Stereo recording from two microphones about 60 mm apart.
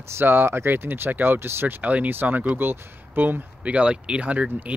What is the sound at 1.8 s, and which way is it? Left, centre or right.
Speech, right.